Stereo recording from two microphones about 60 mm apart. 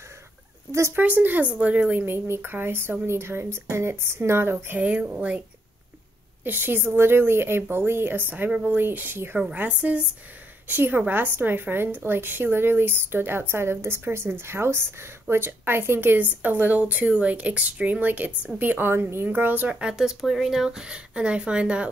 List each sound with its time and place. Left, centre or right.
0.7 s speech: right
0.9 s speech: right
2.0 s speech: right
4.7 s speech: centre
6.4 s a woman's voice: right
9.4 s a woman's voice: right
19.2 s speech: right
20.0 s speech: centre